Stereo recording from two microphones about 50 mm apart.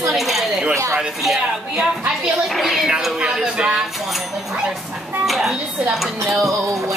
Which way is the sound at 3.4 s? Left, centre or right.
Centre.